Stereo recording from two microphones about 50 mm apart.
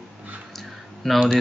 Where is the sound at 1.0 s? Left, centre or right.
Centre.